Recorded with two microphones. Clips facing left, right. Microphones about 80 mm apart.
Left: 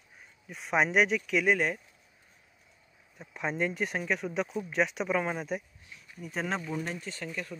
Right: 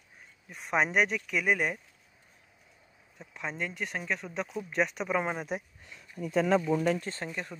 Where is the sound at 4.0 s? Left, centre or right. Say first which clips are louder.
Left 2 dB; centre.